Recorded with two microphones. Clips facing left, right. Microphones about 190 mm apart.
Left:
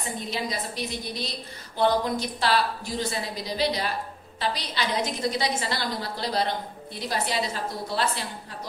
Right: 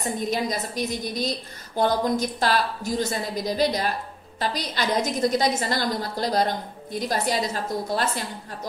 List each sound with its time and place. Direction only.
0.3 s a woman's voice: 45° right (ahead or behind)